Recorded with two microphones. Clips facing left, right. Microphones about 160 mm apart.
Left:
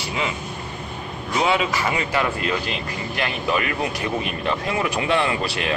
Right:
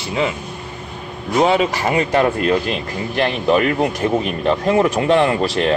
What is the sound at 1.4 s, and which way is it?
Speech, 40° right (ahead or behind).